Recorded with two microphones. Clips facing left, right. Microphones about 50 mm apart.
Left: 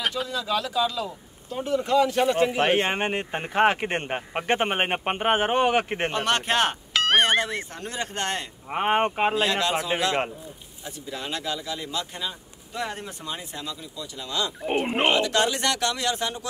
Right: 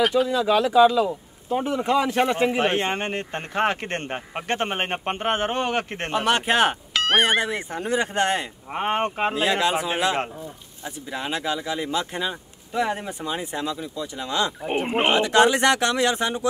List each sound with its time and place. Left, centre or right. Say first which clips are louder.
0.3 s speech: right 7 dB; right
2.3 s speech: right 1 dB; centre
2.6 s speech: left 1 dB; centre
6.1 s speech: right 4 dB; centre
8.6 s speech: left 3 dB; centre
9.3 s speech: right 2 dB; centre
14.7 s speech: left 1 dB; centre
15.1 s speech: right 5 dB; right